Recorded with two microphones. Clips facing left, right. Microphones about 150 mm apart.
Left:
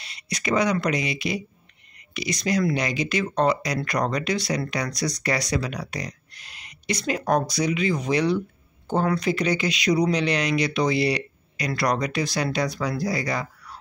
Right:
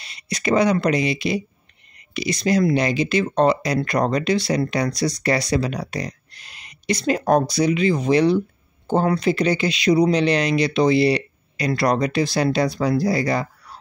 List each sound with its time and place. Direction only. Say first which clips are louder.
0.0 s speech: right 5 dB; 30° right (ahead or behind)